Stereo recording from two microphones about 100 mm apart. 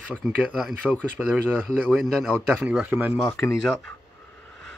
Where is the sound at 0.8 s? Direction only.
10° left (ahead or behind).